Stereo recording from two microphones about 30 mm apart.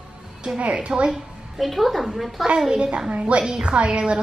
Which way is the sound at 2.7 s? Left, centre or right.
Right.